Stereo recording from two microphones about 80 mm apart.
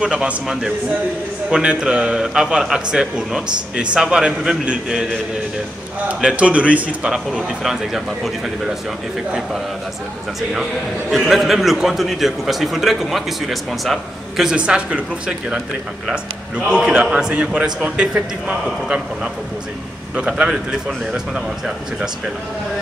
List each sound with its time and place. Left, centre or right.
0.0 s a man's voice: centre
6.0 s a man's voice: centre
10.5 s a man's voice: centre
14.5 s a man's voice: centre